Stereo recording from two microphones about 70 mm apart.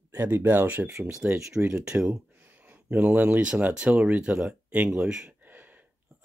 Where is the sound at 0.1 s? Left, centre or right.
Right.